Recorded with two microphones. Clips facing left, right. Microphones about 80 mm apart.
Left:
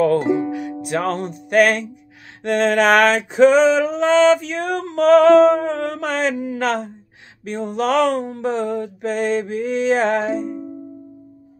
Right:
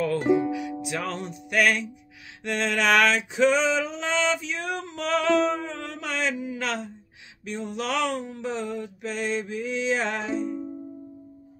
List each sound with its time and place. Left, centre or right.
0.0 s music: left
0.8 s male singing: left